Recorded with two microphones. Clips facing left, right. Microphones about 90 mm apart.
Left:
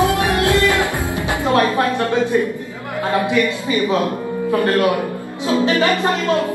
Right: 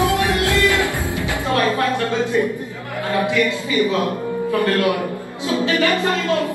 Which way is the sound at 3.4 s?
20° left (ahead or behind).